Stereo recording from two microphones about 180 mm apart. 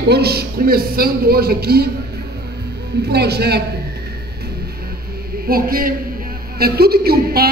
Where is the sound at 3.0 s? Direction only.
65° right (ahead or behind).